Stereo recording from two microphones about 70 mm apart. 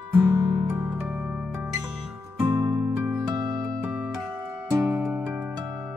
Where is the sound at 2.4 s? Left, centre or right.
Right.